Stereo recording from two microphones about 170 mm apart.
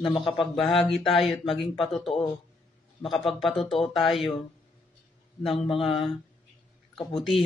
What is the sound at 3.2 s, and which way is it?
Speech, centre (ahead or behind).